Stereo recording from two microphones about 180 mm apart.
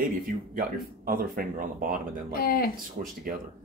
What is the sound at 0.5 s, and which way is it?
Speech, 55° right (ahead or behind).